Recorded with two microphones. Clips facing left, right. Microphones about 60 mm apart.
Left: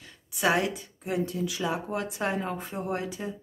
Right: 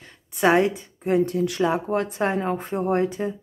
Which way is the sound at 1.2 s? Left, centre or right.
Right.